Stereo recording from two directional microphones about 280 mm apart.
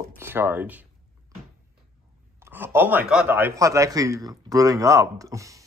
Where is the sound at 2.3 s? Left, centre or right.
Centre.